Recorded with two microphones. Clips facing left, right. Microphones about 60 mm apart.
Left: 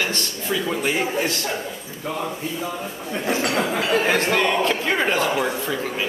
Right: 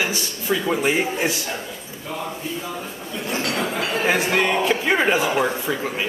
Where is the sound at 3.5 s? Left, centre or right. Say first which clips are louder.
Left 3 dB; left.